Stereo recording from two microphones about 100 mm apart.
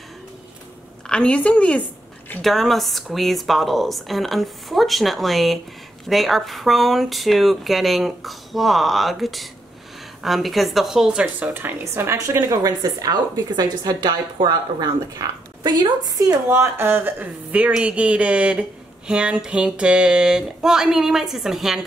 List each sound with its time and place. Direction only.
1.0 s a woman's voice: 10° left (ahead or behind); by 16.3 s 40° right (ahead or behind)
16.4 s a woman's voice: 25° right (ahead or behind); by 21.8 s 5° right (ahead or behind)